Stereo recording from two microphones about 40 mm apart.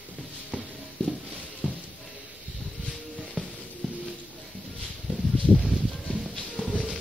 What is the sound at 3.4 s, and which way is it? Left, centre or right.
Music, left.